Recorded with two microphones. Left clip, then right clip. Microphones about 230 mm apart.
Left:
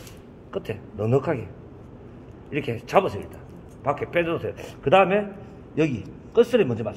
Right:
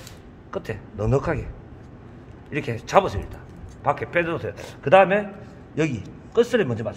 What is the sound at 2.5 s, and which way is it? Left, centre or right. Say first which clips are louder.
A man's voice: right 2 dB; right.